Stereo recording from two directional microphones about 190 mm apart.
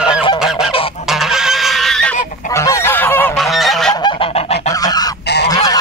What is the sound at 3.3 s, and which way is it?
Goose, centre (ahead or behind).